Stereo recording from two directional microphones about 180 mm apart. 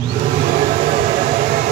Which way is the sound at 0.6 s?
40° right (ahead or behind).